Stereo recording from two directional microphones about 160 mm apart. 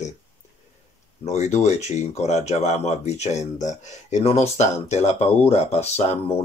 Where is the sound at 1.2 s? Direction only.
45° left (ahead or behind).